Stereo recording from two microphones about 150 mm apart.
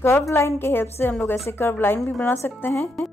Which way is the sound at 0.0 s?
15° left (ahead or behind).